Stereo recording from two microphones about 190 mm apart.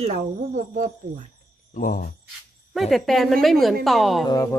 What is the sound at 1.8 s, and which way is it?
Speech, 45° left (ahead or behind).